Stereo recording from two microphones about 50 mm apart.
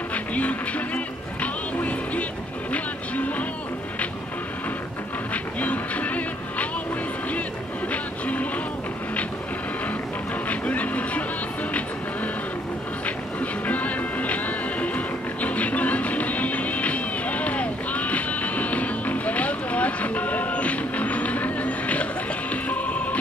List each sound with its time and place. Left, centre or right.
0.1 s music: left
2.7 s vehicle: left
5.3 s music: left
7.9 s music: left
10.5 s vehicle: left
13.0 s music: left